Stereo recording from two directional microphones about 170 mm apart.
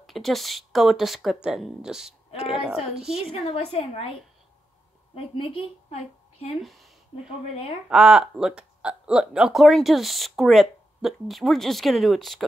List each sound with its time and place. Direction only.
0.0 s speech: centre (ahead or behind)
3.3 s a woman's voice: 35° left (ahead or behind)
5.1 s a woman's voice: 30° left (ahead or behind)
6.6 s speech: centre (ahead or behind)
7.2 s a woman's voice: 35° left (ahead or behind)
7.9 s speech: 5° right (ahead or behind)